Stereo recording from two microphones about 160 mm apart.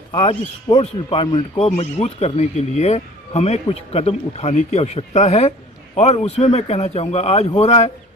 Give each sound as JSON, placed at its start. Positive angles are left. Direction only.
{"t": 0.1, "sound": "a man's voice", "side_deg": 30}
{"t": 1.6, "sound": "a man's voice", "side_deg": 40}